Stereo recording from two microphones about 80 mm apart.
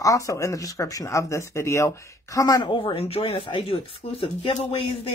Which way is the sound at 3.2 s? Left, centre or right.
Left.